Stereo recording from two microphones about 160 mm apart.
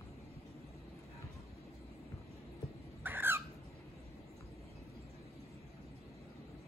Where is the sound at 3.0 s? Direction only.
15° right (ahead or behind).